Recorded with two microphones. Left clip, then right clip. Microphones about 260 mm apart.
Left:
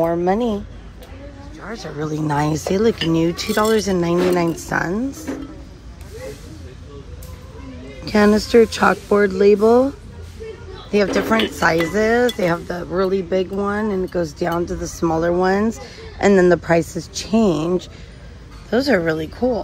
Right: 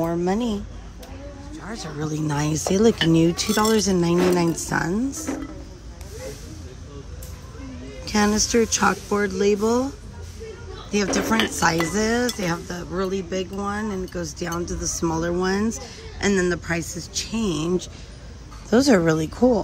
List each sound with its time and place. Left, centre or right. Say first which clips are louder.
0.0 s speech: left 6 dB; centre
1.8 s speech: left 4 dB; centre
4.5 s speech: left 2 dB; centre
8.0 s speech: left 6 dB; centre
11.3 s speech: left 2 dB; centre
15.0 s speech: left 7 dB; centre
16.8 s speech: left 5 dB; centre
17.1 s speech: left 8 dB; centre
18.7 s speech: left 1 dB; right